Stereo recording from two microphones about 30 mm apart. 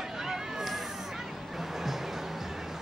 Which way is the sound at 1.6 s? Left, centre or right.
Centre.